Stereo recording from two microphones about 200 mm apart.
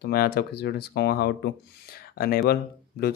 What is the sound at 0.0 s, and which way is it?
Speech, 50° left (ahead or behind).